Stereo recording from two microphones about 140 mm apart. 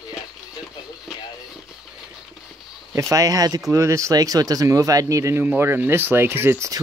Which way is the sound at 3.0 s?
25° right (ahead or behind).